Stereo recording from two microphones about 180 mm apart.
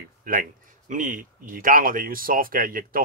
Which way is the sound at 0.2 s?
50° right (ahead or behind).